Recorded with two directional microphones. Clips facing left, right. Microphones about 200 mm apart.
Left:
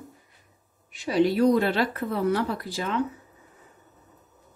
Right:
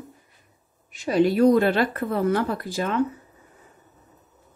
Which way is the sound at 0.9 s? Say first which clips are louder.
Right 2 dB; 50° right (ahead or behind).